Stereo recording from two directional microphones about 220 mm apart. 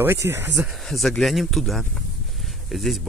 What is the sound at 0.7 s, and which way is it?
Speech, centre (ahead or behind).